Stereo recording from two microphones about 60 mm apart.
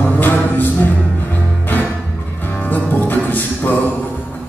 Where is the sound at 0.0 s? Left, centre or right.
Left.